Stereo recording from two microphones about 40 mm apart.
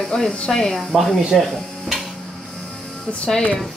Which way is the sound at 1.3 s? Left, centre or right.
Centre.